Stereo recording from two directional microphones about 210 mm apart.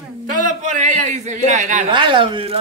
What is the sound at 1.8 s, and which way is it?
Speech, 25° right (ahead or behind).